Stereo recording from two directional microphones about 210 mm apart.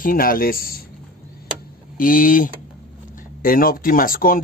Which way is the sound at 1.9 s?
40° left (ahead or behind).